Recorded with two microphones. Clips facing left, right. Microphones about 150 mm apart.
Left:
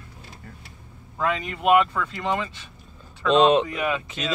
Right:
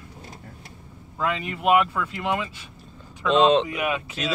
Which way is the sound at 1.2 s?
5° right (ahead or behind).